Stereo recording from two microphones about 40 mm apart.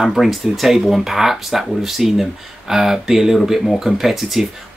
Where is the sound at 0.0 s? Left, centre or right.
Centre.